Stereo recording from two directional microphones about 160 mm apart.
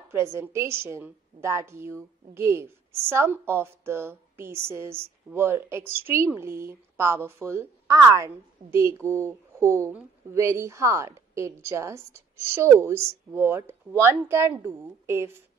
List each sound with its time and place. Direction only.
0.1 s a woman's voice: 15° right (ahead or behind)